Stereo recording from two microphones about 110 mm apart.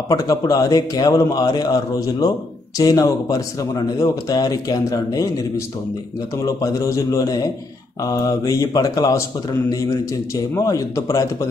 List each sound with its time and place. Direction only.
0.1 s a man's voice: 35° left (ahead or behind)
6.4 s a man's voice: 30° left (ahead or behind)